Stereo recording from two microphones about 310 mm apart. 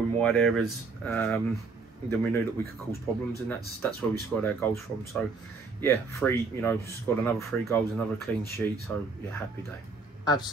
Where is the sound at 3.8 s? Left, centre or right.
Centre.